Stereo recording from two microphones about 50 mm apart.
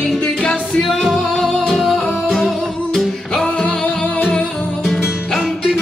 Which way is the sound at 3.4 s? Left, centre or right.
Centre.